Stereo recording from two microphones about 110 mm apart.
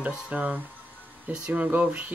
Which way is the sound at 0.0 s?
10° right (ahead or behind).